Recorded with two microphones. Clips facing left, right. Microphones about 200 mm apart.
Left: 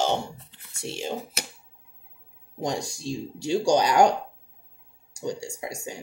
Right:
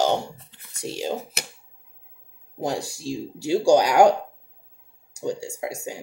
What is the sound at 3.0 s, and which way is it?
Speech, 10° right (ahead or behind).